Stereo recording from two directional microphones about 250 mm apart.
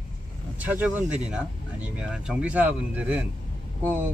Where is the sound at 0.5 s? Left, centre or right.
Centre.